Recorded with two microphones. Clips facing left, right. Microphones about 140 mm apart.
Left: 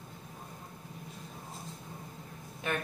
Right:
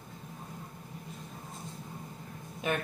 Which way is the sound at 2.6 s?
15° right (ahead or behind).